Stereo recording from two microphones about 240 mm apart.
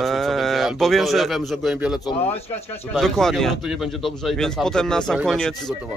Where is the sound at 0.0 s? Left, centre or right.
Centre.